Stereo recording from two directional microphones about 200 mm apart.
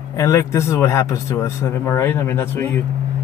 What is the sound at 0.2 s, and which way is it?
Speech, 15° left (ahead or behind).